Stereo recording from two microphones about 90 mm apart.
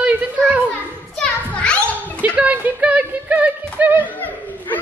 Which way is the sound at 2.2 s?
15° right (ahead or behind).